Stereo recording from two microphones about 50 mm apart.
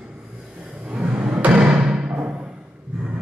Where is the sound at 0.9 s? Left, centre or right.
Right.